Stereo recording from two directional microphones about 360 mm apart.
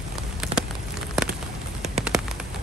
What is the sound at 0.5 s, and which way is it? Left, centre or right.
Rain on surface, centre.